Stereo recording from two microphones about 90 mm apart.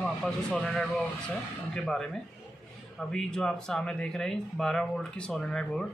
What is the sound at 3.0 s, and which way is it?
Speech, 5° left (ahead or behind).